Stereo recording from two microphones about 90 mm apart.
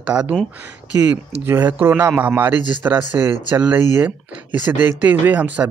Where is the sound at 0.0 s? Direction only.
15° right (ahead or behind).